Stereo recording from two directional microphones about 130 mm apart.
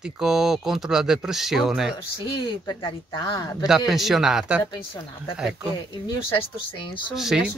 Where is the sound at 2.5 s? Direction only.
40° left (ahead or behind).